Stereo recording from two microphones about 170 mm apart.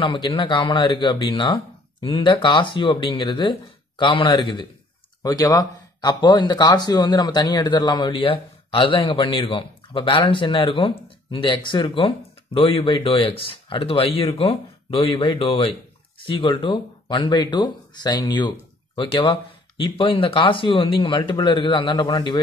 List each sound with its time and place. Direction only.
0.0 s speech: 30° left (ahead or behind)